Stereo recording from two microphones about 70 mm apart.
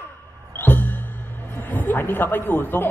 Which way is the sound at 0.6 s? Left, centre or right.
Left.